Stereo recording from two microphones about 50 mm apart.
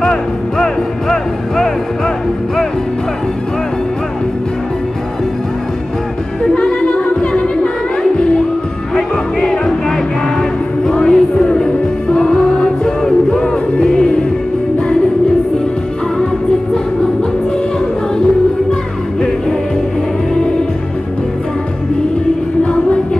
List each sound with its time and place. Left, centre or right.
0.0 s music: centre
6.5 s music: left